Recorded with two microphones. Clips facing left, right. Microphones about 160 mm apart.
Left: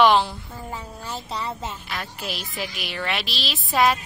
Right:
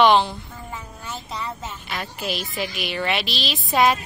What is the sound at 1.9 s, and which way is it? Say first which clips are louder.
A woman's voice: right 3 dB; centre (ahead or behind).